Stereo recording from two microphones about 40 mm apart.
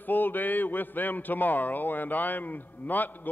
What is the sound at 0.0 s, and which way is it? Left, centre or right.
A man's voice, left.